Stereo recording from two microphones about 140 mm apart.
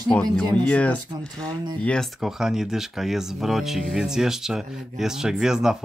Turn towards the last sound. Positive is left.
turn(degrees=-5)  # may be behind; listen again after turning